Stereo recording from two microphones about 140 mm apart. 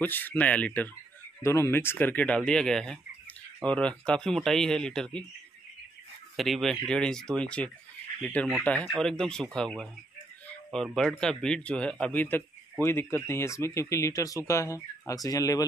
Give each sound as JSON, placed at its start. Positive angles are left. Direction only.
{"t": 0.0, "sound": "a man's voice", "side_deg": 15}
{"t": 6.3, "sound": "a man's voice", "side_deg": 0}